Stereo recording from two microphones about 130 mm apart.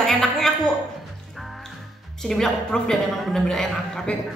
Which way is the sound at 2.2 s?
5° left (ahead or behind).